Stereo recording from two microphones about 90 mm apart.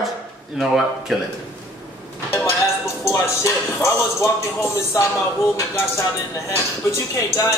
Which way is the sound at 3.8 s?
35° left (ahead or behind).